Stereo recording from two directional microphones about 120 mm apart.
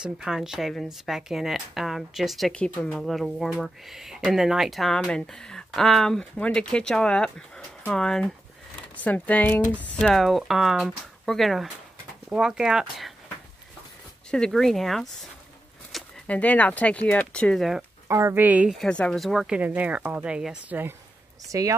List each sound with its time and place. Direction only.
0.0 s speech: 5° right (ahead or behind)
14.3 s speech: 5° left (ahead or behind)
15.9 s a sound: centre (ahead or behind)
16.3 s speech: 10° left (ahead or behind)
18.0 s speech: 25° right (ahead or behind)
18.8 s speech: 5° left (ahead or behind); by 20.8 s 10° right (ahead or behind)
21.5 s speech: 30° right (ahead or behind)